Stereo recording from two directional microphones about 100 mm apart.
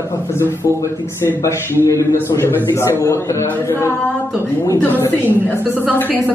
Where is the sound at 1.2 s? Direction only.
25° left (ahead or behind).